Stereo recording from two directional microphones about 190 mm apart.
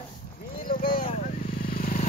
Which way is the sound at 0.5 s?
50° left (ahead or behind).